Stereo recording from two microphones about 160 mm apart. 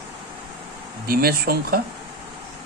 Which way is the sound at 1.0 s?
65° right (ahead or behind).